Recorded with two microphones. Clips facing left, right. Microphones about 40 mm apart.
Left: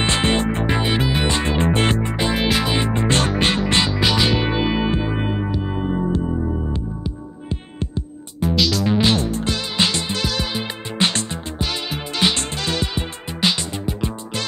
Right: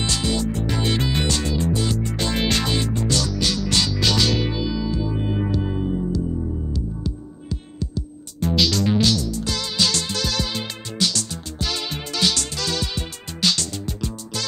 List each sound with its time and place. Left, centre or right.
0.0 s music: left
2.0 s music: left
2.3 s music: centre
2.7 s music: left
4.6 s music: left
5.3 s music: centre
5.7 s music: left
7.4 s music: left
8.4 s music: centre
9.0 s music: left